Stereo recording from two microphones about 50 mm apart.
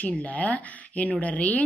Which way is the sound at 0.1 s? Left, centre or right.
Left.